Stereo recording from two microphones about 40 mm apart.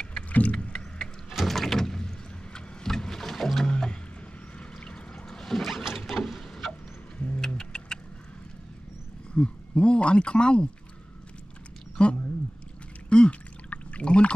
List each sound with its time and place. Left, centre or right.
0.3 s vehicle: left
0.6 s rowboat: left
1.3 s vehicle: centre
4.6 s pour: left
5.5 s a sound: centre
7.3 s vehicle: centre
9.3 s speech: left
12.0 s a sound: left
13.1 s pour: left